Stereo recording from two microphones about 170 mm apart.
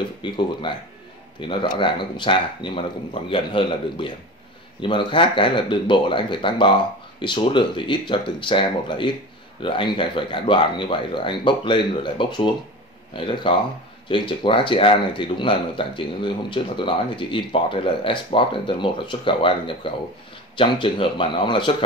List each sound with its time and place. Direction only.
0.2 s speech: 30° left (ahead or behind)